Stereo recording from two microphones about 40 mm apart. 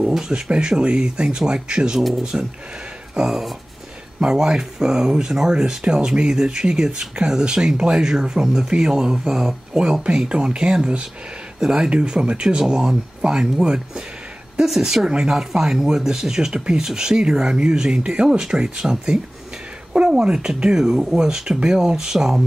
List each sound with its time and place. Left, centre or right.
0.5 s speech: right
2.0 s speech: centre
4.2 s speech: centre
10.0 s speech: right
19.9 s a sound: right
20.2 s speech: right